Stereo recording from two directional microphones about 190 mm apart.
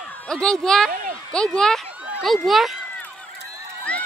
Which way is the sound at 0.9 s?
45° right (ahead or behind).